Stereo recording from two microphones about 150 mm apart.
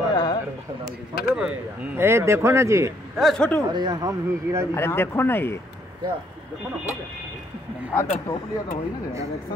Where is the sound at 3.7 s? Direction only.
30° right (ahead or behind).